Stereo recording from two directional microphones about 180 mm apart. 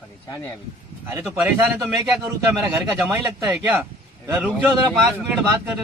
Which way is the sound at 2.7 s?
10° right (ahead or behind).